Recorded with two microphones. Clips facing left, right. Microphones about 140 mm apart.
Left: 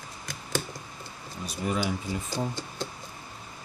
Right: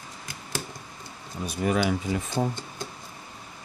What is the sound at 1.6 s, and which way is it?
Speech, 75° right (ahead or behind).